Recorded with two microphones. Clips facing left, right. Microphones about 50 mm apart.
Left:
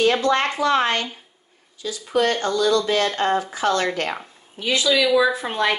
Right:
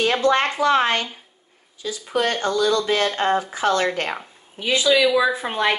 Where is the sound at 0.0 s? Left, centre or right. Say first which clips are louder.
Even; right.